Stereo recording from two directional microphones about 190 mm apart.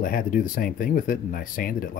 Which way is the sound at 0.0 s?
45° left (ahead or behind).